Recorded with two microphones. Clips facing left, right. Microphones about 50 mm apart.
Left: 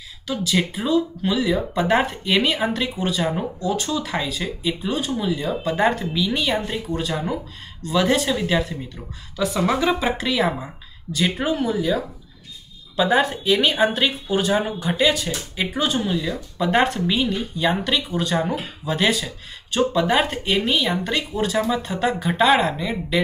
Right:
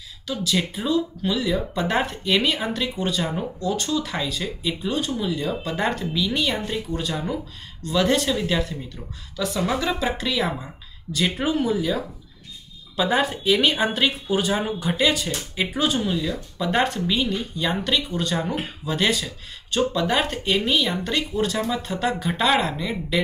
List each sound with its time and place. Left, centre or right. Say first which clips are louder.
0.6 s a woman's voice: left 3 dB; centre; by 10.0 s left
10.0 s speech: left 3 dB; centre